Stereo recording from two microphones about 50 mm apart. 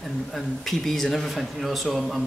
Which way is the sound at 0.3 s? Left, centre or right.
Centre.